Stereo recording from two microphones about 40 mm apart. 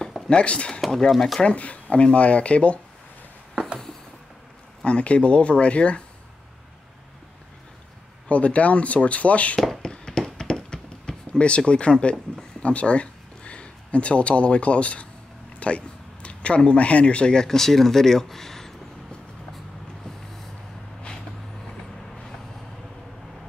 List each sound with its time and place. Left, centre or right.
0.3 s speech: left
0.7 s speech: centre
1.4 s speech: left
4.8 s speech: left
8.3 s speech: left
9.8 s a sound: centre
15.6 s speech: left; by 18.7 s centre